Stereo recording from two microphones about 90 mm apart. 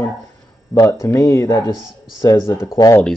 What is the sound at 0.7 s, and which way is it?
Speech, 35° left (ahead or behind).